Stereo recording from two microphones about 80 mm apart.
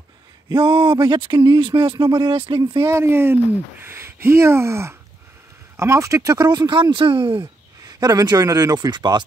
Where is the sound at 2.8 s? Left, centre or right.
Right.